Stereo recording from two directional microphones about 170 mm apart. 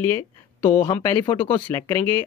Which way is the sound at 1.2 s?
30° left (ahead or behind).